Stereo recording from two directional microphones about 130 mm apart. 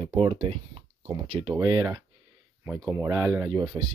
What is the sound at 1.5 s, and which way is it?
Speech, 30° right (ahead or behind).